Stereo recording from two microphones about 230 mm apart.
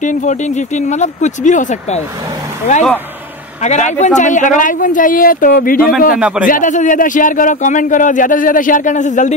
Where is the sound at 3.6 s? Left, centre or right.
Left.